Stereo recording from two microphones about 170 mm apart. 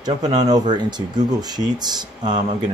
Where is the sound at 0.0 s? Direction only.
25° right (ahead or behind).